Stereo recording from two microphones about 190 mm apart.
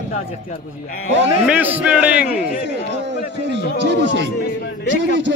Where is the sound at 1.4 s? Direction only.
5° right (ahead or behind).